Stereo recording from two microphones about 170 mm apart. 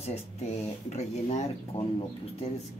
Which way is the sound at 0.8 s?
40° left (ahead or behind).